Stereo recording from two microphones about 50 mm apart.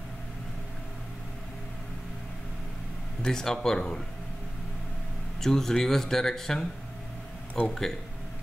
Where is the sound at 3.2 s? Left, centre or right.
Centre.